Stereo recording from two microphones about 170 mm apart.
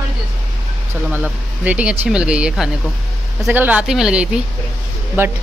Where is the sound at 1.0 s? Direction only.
10° right (ahead or behind).